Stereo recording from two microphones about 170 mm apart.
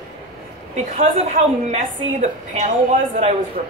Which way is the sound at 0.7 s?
45° right (ahead or behind).